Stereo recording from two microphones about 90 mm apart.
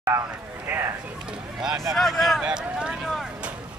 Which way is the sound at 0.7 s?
25° right (ahead or behind).